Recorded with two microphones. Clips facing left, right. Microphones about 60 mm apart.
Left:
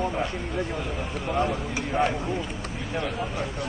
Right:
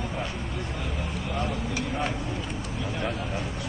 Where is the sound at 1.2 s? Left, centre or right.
Centre.